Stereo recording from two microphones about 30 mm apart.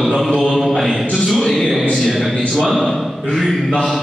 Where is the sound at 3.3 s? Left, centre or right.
Centre.